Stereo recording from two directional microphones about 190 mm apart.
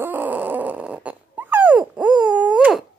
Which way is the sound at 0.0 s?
10° right (ahead or behind).